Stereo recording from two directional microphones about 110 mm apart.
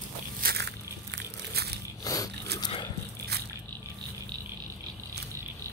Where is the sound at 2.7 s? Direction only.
45° left (ahead or behind).